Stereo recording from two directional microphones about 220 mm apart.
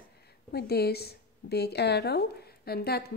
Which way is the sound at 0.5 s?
45° left (ahead or behind).